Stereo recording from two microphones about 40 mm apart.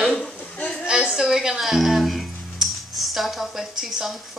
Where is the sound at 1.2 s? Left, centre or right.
Centre.